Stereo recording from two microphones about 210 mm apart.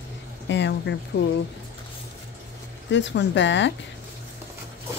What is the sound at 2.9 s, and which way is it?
Speech, 55° left (ahead or behind).